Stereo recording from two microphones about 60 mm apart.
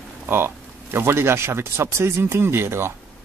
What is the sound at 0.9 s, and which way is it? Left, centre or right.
Speech, right.